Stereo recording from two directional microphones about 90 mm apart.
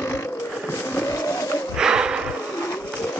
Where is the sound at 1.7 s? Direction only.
10° right (ahead or behind).